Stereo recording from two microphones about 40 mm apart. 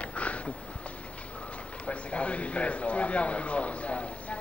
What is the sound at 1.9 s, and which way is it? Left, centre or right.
A man's voice, left.